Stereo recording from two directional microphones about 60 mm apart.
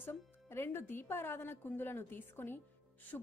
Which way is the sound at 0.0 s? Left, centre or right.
Left.